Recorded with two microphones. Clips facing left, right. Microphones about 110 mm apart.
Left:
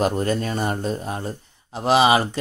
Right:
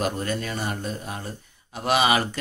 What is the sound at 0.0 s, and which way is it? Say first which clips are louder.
A man's voice: left 5 dB; 35° left (ahead or behind).